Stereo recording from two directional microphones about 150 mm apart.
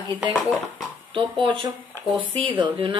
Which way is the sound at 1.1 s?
30° right (ahead or behind).